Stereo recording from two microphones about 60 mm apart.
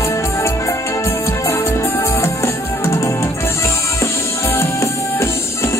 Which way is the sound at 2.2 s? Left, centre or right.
Left.